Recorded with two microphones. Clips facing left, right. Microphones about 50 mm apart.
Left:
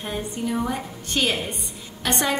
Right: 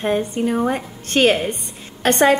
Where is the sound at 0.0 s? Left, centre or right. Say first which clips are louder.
Right 9 dB; right.